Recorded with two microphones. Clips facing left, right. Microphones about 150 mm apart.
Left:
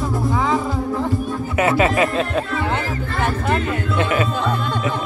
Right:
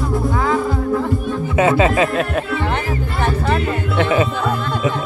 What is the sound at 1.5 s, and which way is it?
Speech, 20° right (ahead or behind).